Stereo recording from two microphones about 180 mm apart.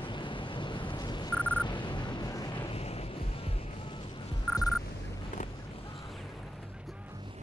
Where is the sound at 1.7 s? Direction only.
25° left (ahead or behind).